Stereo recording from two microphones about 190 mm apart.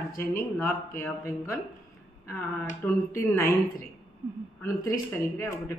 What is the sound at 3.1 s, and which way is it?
Speech, 15° left (ahead or behind).